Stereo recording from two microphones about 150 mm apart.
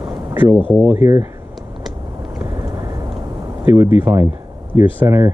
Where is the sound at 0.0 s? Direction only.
30° right (ahead or behind).